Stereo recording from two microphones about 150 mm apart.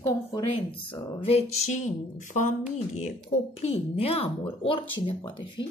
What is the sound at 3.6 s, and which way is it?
A woman's voice, 40° left (ahead or behind).